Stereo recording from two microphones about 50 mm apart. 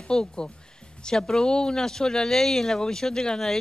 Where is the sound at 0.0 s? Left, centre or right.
Centre.